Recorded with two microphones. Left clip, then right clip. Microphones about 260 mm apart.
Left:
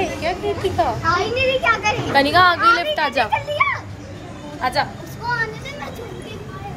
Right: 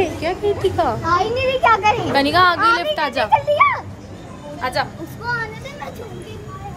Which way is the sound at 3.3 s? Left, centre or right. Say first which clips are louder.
Right 5 dB; right.